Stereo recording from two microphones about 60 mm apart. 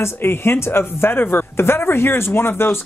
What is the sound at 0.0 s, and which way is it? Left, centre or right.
Speech, left.